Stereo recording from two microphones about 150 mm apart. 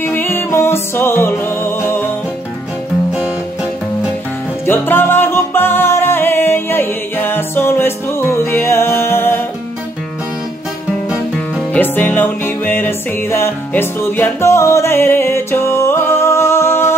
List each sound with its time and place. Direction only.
0.0 s music: 15° left (ahead or behind)
4.6 s music: 15° left (ahead or behind)
11.7 s music: 10° left (ahead or behind)